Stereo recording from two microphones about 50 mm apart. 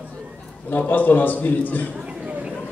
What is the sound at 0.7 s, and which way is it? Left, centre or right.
A man's voice, left.